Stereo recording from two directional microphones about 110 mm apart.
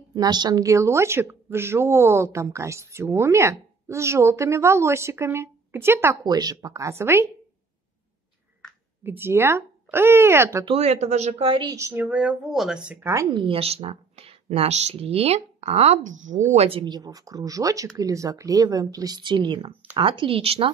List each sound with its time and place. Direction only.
0.1 s a woman's voice: 40° right (ahead or behind); by 6.1 s 20° right (ahead or behind)
6.2 s a woman's voice: 35° right (ahead or behind)
9.0 s a woman's voice: 20° right (ahead or behind)
10.8 s speech: 85° right; by 11.7 s 55° right (ahead or behind)
11.7 s a woman's voice: 25° right (ahead or behind)
12.0 s speech: 10° right (ahead or behind)
13.0 s a woman's voice: 30° right (ahead or behind)
13.3 s speech: 55° right (ahead or behind)
16.8 s a woman's voice: 40° right (ahead or behind); by 20.7 s 55° right (ahead or behind)